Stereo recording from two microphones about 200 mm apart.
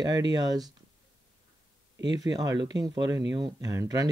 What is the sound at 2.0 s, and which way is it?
Speech, 20° right (ahead or behind).